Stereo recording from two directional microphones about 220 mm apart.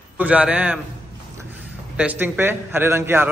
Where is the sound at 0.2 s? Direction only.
5° right (ahead or behind).